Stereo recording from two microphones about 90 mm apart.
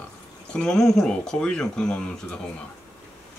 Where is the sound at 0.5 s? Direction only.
5° left (ahead or behind).